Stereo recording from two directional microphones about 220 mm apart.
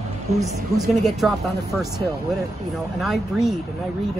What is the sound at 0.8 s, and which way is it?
Speech, centre (ahead or behind).